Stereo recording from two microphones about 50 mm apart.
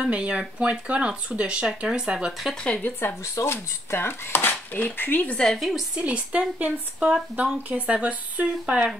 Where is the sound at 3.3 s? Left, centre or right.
Left.